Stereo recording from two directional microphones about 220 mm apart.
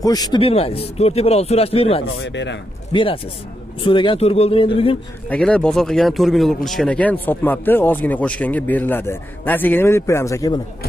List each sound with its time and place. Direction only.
0.0 s speech: 15° left (ahead or behind)
2.2 s speech: 55° left (ahead or behind)
2.9 s speech: 25° left (ahead or behind)
5.3 s speech: 5° left (ahead or behind)